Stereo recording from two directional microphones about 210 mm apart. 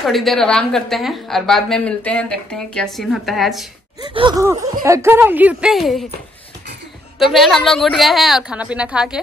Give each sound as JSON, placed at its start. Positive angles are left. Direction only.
{"t": 0.0, "sound": "a woman's voice", "side_deg": 0}
{"t": 4.0, "sound": "gasp", "side_deg": -25}
{"t": 4.8, "sound": "speech", "side_deg": -15}
{"t": 7.2, "sound": "a woman's voice", "side_deg": 0}